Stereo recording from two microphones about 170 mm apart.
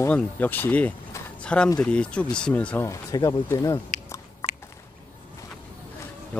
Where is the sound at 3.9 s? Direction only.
40° left (ahead or behind).